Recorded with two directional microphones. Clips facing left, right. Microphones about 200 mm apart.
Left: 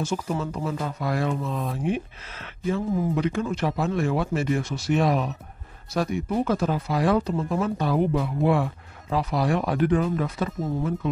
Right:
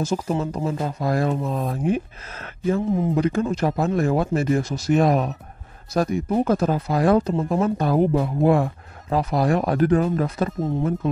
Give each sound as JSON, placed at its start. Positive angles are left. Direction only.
{"t": 0.1, "sound": "speech", "side_deg": -35}